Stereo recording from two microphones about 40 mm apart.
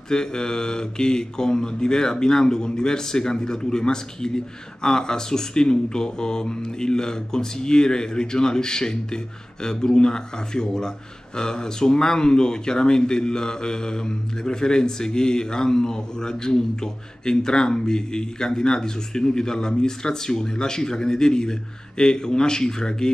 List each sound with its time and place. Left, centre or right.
0.1 s speech: centre